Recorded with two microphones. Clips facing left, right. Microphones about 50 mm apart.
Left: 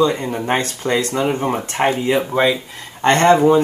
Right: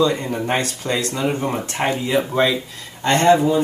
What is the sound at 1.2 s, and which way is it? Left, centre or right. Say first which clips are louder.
Speech: left 2 dB; left.